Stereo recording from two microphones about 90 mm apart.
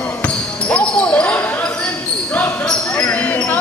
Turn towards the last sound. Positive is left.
turn(degrees=20)  # may be behind; listen again after turning